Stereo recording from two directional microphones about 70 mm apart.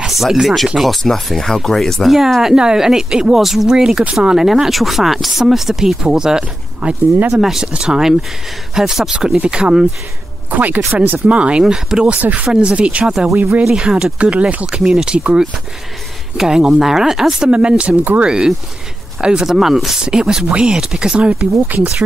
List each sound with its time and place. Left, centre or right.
0.0 s speech: centre
10.5 s speech: right
13.7 s speech: centre
14.8 s speech: centre
19.5 s speech: centre